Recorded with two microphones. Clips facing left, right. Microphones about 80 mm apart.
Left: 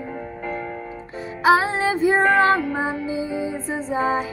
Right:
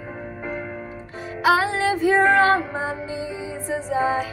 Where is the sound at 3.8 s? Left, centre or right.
Left.